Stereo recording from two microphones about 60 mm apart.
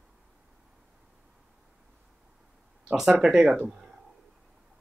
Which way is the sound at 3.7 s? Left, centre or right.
Centre.